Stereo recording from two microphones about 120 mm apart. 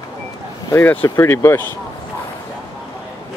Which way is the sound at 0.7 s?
20° left (ahead or behind).